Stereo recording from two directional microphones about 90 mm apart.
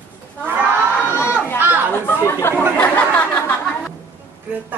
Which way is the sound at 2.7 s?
20° left (ahead or behind).